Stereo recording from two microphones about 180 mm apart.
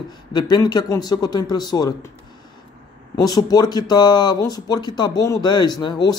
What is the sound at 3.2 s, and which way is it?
Speech, 20° left (ahead or behind).